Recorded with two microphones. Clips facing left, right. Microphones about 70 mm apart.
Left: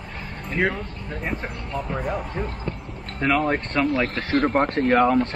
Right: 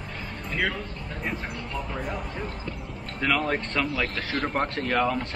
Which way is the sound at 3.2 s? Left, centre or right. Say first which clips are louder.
Left 4 dB; left.